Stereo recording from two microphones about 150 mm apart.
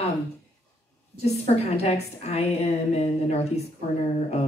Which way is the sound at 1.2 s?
45° left (ahead or behind).